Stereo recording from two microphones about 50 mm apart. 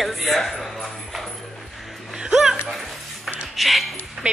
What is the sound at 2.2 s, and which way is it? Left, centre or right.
Laughter, centre.